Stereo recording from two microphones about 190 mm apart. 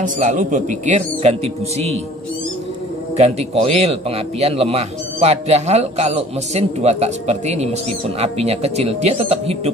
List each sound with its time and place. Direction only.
0.0 s a man's voice: 40° right (ahead or behind)
3.2 s a man's voice: 35° right (ahead or behind)